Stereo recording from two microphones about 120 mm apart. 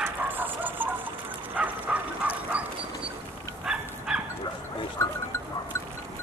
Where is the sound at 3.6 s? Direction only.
5° right (ahead or behind).